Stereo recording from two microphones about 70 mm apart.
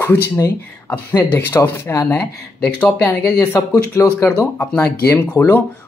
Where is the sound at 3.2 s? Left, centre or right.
Left.